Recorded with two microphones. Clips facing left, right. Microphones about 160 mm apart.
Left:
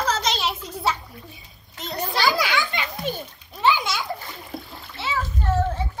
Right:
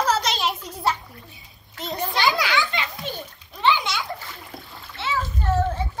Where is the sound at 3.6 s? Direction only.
5° left (ahead or behind).